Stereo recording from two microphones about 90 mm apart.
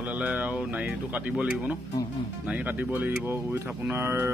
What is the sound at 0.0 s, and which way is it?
Speech, 15° right (ahead or behind).